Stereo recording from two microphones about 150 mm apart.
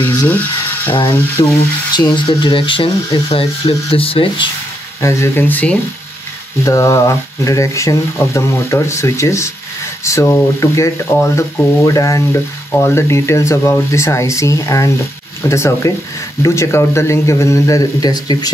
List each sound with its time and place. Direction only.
0.3 s speech: 10° left (ahead or behind)
1.4 s speech: 35° left (ahead or behind)
5.0 s speech: 15° left (ahead or behind)